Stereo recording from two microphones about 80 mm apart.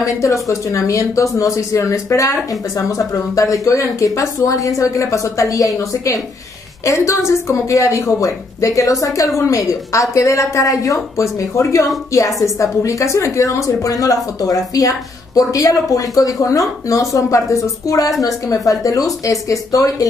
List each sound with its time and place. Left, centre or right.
0.0 s speech: left